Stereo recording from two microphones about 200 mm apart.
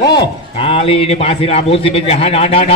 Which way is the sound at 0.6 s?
30° left (ahead or behind).